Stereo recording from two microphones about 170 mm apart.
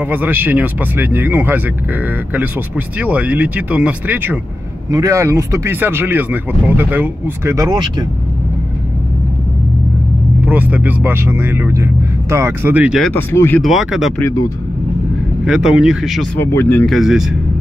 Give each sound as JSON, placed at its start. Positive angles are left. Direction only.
{"t": 0.0, "sound": "speech", "side_deg": -10}
{"t": 3.0, "sound": "speech", "side_deg": -10}
{"t": 10.4, "sound": "speech", "side_deg": -10}
{"t": 13.0, "sound": "speech", "side_deg": 10}
{"t": 13.6, "sound": "speech", "side_deg": 0}
{"t": 15.4, "sound": "speech", "side_deg": -5}
{"t": 16.3, "sound": "speech", "side_deg": 10}
{"t": 16.8, "sound": "speech", "side_deg": 0}